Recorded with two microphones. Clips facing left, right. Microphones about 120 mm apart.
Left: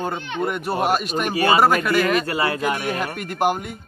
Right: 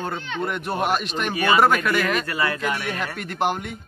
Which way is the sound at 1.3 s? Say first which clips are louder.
Left 1 dB; 35° left (ahead or behind).